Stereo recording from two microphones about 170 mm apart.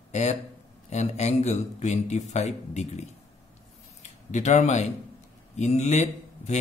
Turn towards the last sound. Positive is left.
turn(degrees=40)  # may be behind; listen again after turning